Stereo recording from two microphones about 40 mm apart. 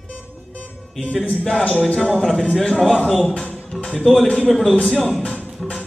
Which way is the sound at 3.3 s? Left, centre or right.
Left.